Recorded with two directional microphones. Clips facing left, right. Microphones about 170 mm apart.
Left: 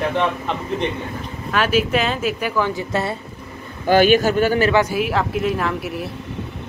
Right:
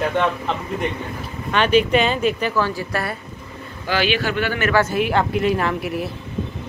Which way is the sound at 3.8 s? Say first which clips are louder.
Left 7 dB; 45° left (ahead or behind).